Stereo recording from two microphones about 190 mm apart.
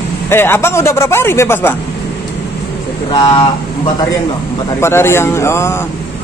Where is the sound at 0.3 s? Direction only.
10° left (ahead or behind).